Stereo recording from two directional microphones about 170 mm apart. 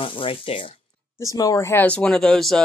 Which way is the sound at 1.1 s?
20° left (ahead or behind).